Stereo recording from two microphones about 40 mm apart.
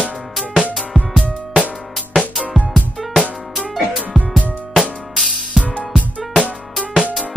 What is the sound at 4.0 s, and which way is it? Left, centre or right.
Music, right.